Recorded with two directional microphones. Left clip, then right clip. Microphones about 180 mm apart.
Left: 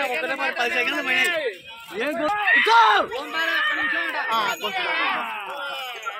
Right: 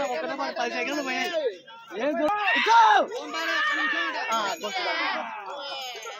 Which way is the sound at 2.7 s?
60° right (ahead or behind).